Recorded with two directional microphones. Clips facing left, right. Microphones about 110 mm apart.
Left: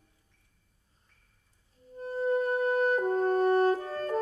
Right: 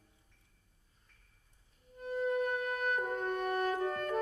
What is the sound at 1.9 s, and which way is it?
Music, 35° left (ahead or behind).